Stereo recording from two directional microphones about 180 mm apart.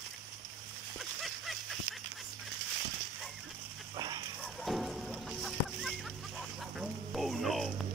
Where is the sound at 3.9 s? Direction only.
20° right (ahead or behind).